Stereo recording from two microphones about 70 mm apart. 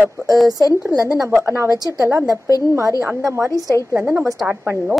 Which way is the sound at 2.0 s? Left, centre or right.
Right.